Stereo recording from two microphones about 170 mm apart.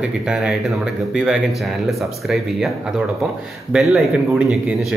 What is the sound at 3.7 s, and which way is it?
Speech, centre (ahead or behind).